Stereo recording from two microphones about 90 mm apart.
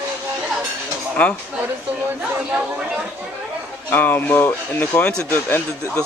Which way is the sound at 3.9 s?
20° left (ahead or behind).